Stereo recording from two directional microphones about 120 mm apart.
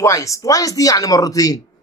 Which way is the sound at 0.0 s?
25° left (ahead or behind).